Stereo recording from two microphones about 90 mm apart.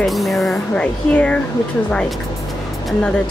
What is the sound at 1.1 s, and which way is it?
Speech, 15° left (ahead or behind).